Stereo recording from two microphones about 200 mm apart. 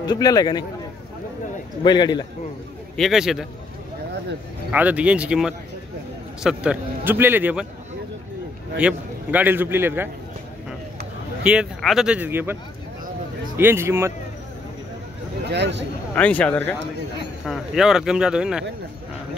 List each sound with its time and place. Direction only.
0.0 s a man's voice: 20° left (ahead or behind)
1.8 s a man's voice: 20° left (ahead or behind)
3.0 s speech: centre (ahead or behind)
4.6 s a man's voice: 5° right (ahead or behind)
8.7 s a man's voice: 5° right (ahead or behind)
11.4 s speech: 5° right (ahead or behind)
13.6 s a man's voice: 10° right (ahead or behind)
15.5 s speech: 60° right (ahead or behind)
16.2 s speech: 5° left (ahead or behind)